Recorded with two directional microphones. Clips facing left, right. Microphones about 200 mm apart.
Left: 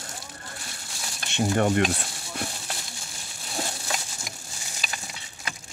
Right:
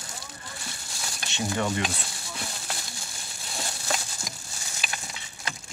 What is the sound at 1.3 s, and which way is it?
Speech, 55° left (ahead or behind).